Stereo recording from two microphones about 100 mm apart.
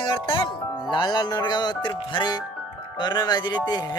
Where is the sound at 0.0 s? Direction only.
55° left (ahead or behind).